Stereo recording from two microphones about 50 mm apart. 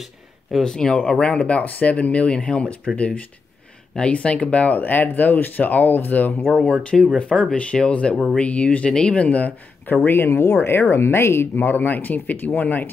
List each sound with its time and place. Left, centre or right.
0.7 s speech: centre
3.9 s speech: left
6.5 s speech: left
10.0 s speech: left